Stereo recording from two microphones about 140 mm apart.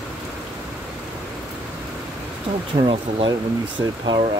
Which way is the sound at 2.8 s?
35° right (ahead or behind).